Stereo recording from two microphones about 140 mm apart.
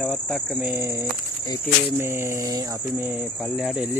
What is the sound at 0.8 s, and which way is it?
Speech, 20° right (ahead or behind).